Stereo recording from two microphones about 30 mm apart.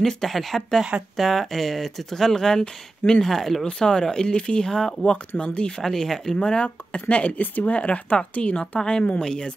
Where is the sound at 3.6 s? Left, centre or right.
Left.